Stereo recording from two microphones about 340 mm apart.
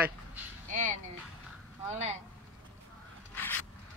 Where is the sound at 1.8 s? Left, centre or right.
Centre.